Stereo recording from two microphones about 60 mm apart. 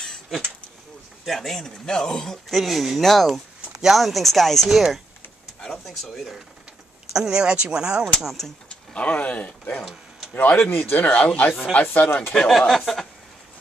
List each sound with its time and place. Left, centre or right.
0.0 s a sound: centre
1.2 s speech: centre
2.5 s speech: centre
8.9 s speech: left
10.3 s speech: left
12.4 s speech: centre